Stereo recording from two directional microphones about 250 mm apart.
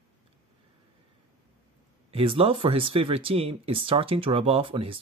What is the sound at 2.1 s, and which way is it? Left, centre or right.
Speech, right.